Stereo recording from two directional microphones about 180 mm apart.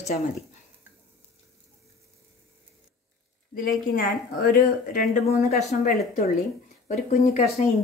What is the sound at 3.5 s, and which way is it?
A woman's voice, 55° left (ahead or behind).